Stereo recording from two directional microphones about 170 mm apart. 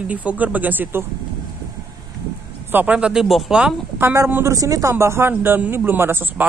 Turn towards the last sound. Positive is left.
turn(degrees=-10)  # may be behind; listen again after turning